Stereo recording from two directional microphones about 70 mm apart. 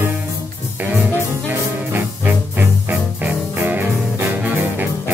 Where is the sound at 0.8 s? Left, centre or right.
Right.